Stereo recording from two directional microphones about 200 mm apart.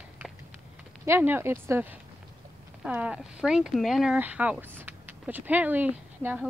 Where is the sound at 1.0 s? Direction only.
10° right (ahead or behind).